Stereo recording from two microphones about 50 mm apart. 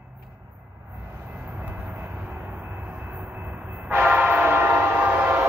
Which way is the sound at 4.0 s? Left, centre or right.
Right.